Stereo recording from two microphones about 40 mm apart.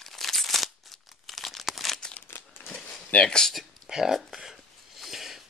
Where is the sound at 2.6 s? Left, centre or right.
Left.